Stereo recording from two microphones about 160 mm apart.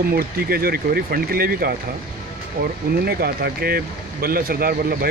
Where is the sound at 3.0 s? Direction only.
80° right.